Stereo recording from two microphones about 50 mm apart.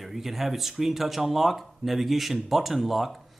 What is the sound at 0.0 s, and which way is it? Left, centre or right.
Speech, centre.